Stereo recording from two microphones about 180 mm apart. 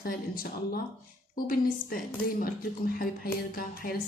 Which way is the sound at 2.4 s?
50° left (ahead or behind).